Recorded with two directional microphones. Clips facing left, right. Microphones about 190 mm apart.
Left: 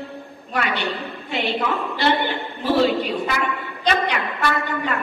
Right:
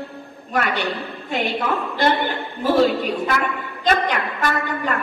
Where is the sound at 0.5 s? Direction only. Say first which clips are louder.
Right 2 dB; 45° right (ahead or behind).